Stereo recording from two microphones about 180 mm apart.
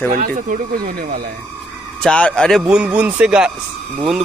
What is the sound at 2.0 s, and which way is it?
Speech, 5° left (ahead or behind).